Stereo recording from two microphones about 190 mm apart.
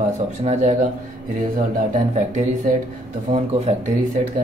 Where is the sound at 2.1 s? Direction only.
40° right (ahead or behind).